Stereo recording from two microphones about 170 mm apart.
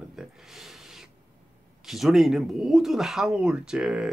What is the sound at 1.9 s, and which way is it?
Speech, centre (ahead or behind).